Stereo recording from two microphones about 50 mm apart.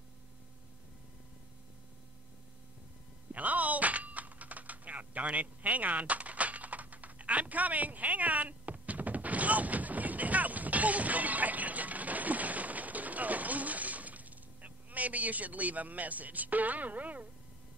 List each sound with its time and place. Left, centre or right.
3.3 s typing: right